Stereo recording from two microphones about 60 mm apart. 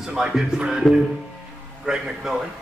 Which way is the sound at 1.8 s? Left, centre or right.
Centre.